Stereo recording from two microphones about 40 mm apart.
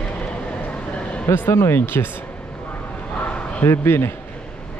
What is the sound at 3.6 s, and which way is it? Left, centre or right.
Speech, left.